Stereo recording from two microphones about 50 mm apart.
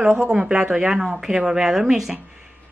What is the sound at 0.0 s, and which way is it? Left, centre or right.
Speech, centre.